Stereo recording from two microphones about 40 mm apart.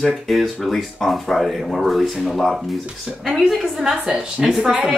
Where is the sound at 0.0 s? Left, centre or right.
Centre.